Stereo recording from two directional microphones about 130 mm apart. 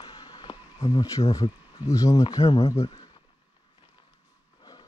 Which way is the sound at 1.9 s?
25° left (ahead or behind).